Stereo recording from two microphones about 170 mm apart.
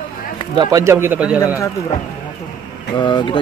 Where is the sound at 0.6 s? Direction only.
20° right (ahead or behind).